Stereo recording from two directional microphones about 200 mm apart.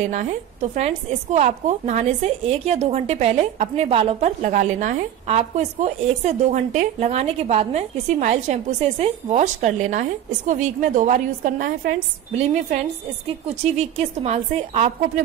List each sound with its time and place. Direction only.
0.1 s a woman's voice: 40° right (ahead or behind)
13.5 s a woman's voice: 30° right (ahead or behind)